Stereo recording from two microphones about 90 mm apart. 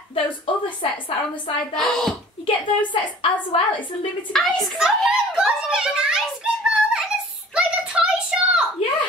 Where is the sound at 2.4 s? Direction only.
85° left.